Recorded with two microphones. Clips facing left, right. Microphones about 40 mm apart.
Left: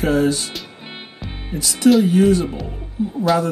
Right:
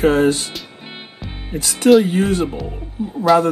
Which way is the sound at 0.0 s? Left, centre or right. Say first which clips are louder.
Right 3 dB; right.